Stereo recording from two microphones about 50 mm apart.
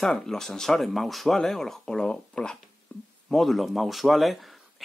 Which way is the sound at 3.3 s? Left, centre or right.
Centre.